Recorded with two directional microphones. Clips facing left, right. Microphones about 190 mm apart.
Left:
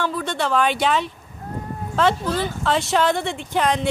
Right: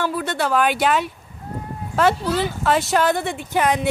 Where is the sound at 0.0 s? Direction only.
5° right (ahead or behind).